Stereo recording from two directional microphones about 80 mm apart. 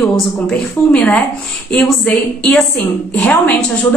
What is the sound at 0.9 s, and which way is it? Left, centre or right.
A woman's voice, centre.